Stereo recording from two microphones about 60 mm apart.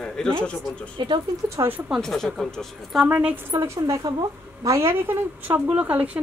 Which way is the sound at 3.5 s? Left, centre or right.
Right.